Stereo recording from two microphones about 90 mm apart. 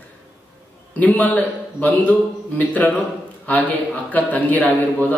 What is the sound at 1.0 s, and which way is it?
A man's voice, 20° left (ahead or behind).